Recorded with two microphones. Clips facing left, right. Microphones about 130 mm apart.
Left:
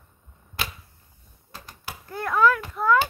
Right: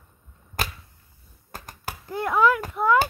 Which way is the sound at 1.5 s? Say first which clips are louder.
Right 3 dB; 45° right (ahead or behind).